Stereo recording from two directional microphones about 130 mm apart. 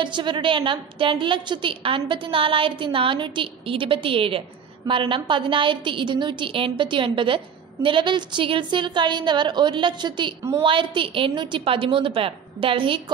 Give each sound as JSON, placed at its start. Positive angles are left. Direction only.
{"t": 0.0, "sound": "a woman's voice", "side_deg": -35}